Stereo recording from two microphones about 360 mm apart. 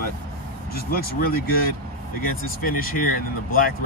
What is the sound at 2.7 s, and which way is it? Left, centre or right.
Speech, left.